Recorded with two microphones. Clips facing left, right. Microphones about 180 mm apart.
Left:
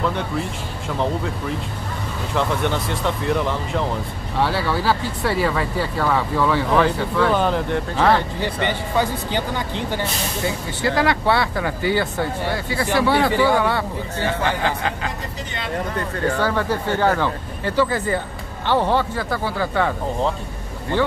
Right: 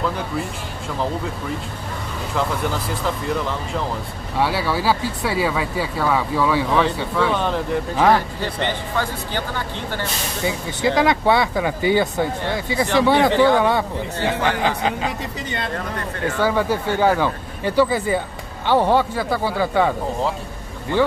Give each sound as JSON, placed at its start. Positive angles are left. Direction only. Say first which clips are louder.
{"t": 2.3, "sound": "speech", "louder": "left 2 dB", "side_deg": 0}
{"t": 8.4, "sound": "speech", "louder": "left 1 dB", "side_deg": 15}
{"t": 10.4, "sound": "speech", "louder": "right 3 dB", "side_deg": -15}
{"t": 13.3, "sound": "speech", "louder": "right 2 dB", "side_deg": 10}
{"t": 13.6, "sound": "speech", "louder": "right 2 dB", "side_deg": -15}
{"t": 16.4, "sound": "speech", "louder": "right 2 dB", "side_deg": -10}